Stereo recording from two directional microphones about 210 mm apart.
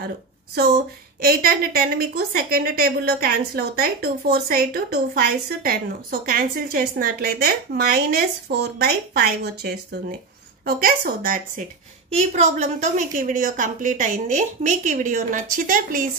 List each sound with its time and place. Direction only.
1.2 s a woman's voice: 45° right (ahead or behind)